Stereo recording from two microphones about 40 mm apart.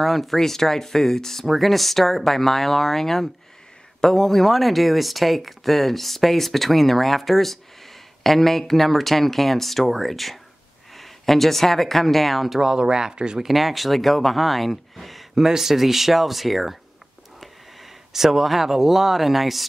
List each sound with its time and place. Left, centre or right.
0.0 s speech: centre
12.5 s speech: centre
13.5 s speech: centre
15.3 s speech: centre
18.1 s speech: centre